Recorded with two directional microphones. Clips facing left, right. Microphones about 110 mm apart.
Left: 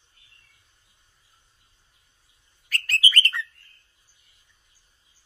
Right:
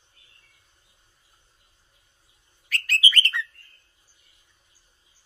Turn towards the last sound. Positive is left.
turn(degrees=35)  # may be behind; listen again after turning